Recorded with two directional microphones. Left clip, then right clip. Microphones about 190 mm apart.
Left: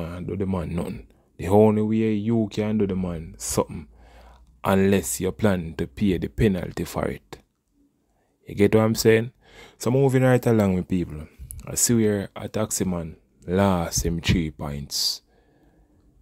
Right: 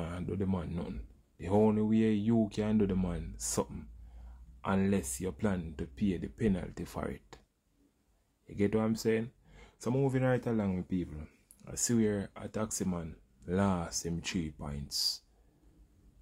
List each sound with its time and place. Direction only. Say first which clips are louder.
0.0 s speech: left 8 dB; 25° left (ahead or behind); by 1.9 s 50° left (ahead or behind)
1.9 s speech: left 7 dB; 30° left (ahead or behind)
4.6 s speech: left 12 dB; 65° left (ahead or behind)
8.5 s speech: left 12 dB; 55° left (ahead or behind); by 15.2 s 40° left (ahead or behind)